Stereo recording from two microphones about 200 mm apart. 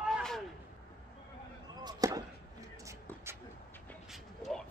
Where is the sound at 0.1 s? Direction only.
5° left (ahead or behind).